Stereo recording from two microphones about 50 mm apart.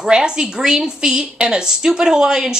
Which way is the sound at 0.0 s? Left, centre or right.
Centre.